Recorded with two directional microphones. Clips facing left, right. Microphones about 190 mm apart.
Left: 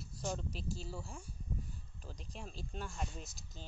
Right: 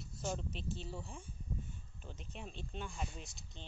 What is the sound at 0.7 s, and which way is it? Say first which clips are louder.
Speech: even; 35° left (ahead or behind).